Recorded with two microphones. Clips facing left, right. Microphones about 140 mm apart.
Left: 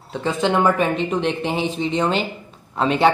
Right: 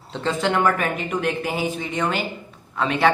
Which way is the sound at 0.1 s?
15° left (ahead or behind).